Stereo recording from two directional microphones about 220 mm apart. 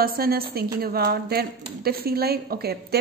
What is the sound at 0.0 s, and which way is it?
Speech, 45° right (ahead or behind).